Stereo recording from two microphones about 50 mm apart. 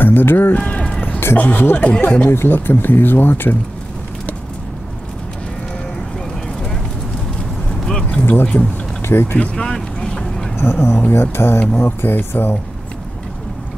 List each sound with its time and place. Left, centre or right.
0.0 s speech: left
0.6 s speech: left
1.3 s a man's voice: left
7.8 s a sound: centre
8.5 s speech: left
9.6 s vehicle: centre
10.6 s speech: left